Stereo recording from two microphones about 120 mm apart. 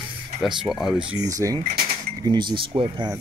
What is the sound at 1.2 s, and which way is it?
Speech, 30° right (ahead or behind).